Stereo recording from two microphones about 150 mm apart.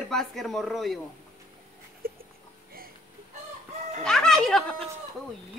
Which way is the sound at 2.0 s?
80° right.